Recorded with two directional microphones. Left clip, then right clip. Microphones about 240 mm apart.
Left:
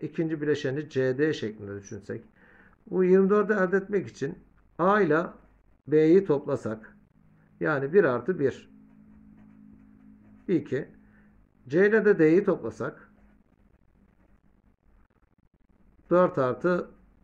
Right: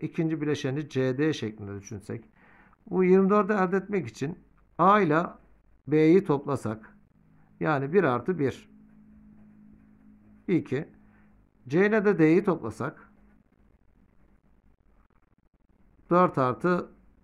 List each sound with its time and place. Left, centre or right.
0.0 s speech: right
10.4 s speech: right
16.1 s speech: right